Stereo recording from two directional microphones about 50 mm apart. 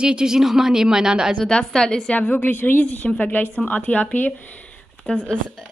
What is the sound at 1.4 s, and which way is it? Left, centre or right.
Speech, left.